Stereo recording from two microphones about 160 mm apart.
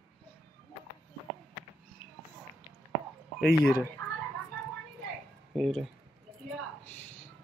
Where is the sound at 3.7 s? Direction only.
20° left (ahead or behind).